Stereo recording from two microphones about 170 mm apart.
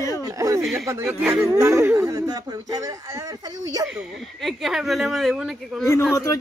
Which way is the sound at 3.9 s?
Centre (ahead or behind).